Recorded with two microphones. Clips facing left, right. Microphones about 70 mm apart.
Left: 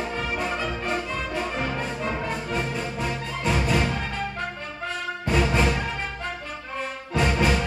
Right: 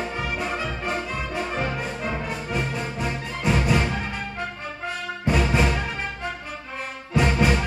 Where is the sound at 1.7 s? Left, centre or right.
Centre.